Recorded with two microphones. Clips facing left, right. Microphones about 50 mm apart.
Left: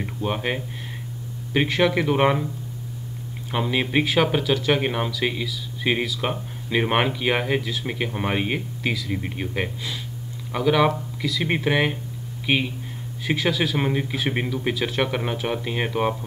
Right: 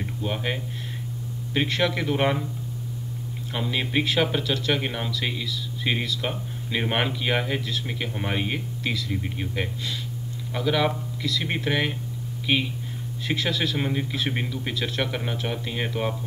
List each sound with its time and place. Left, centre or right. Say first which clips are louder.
0.0 s speech: left 3 dB; centre
3.5 s speech: left 4 dB; left
13.2 s speech: left 3 dB; centre